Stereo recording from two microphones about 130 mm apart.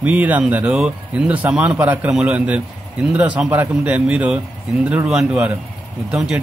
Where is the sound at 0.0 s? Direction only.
10° right (ahead or behind).